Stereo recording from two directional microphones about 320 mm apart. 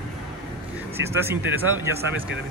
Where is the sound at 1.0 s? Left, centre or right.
Centre.